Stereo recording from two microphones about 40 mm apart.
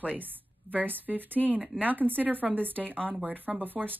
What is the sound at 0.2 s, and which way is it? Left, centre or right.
Speech, right.